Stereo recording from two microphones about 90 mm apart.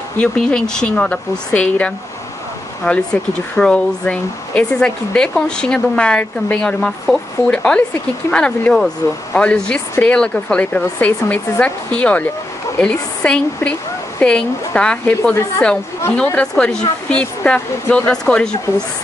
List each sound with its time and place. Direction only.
0.2 s speech: 10° left (ahead or behind)
16.3 s speech: 10° left (ahead or behind)